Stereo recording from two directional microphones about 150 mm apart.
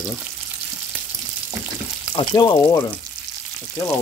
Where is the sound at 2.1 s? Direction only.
30° left (ahead or behind).